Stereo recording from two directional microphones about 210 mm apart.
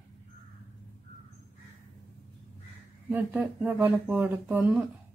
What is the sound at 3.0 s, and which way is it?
Speech, 5° right (ahead or behind).